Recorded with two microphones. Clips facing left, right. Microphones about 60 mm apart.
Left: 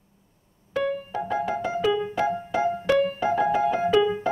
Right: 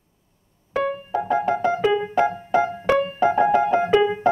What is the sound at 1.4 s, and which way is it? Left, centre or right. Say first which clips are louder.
Music: right 4 dB; right.